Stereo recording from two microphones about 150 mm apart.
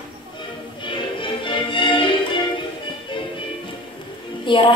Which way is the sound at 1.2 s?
35° left (ahead or behind).